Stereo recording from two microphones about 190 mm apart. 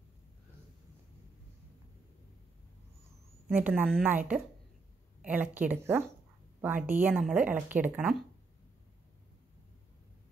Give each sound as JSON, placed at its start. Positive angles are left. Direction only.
{"t": 3.5, "sound": "speech", "side_deg": -10}